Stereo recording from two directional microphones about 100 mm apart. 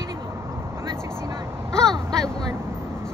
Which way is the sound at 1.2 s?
30° right (ahead or behind).